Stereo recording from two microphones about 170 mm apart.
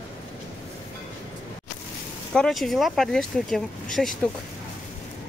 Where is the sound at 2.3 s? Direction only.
Centre (ahead or behind).